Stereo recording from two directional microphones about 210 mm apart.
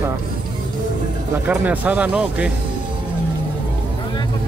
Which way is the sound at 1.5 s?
5° right (ahead or behind).